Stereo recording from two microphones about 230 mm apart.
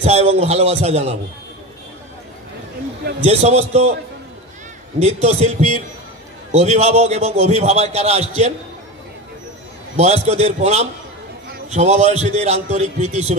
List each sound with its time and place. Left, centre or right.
0.0 s a man's voice: right
3.2 s a man's voice: right
4.9 s a man's voice: right
9.9 s a man's voice: right